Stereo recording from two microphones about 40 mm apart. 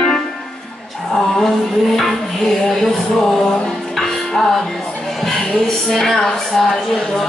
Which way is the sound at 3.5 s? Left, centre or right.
Centre.